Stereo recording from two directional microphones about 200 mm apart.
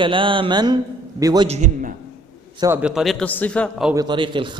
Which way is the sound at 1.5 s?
40° right (ahead or behind).